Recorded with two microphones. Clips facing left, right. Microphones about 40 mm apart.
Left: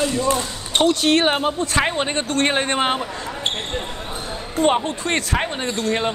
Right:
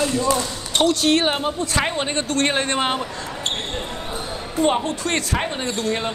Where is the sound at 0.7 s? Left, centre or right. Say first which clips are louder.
Left 1 dB; left.